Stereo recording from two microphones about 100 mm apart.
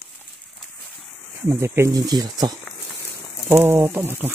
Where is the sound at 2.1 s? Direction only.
40° right (ahead or behind).